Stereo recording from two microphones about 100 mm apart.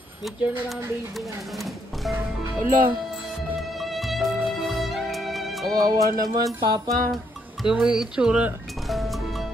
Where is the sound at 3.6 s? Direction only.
Centre (ahead or behind).